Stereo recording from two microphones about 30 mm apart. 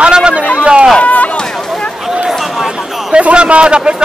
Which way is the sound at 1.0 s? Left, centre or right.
Left.